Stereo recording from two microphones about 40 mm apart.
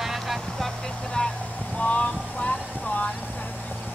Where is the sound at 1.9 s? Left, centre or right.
Left.